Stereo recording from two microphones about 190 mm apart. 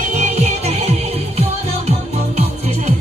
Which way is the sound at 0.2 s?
35° right (ahead or behind).